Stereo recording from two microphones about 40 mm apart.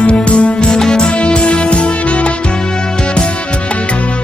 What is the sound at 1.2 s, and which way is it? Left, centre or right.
Music, left.